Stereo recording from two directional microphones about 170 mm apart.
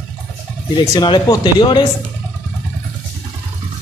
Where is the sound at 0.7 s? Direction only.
25° left (ahead or behind).